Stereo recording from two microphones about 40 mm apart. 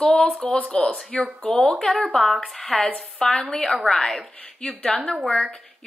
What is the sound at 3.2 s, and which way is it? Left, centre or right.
Speech, centre.